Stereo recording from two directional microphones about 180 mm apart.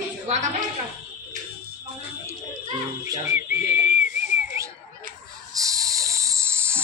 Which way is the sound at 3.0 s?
15° right (ahead or behind).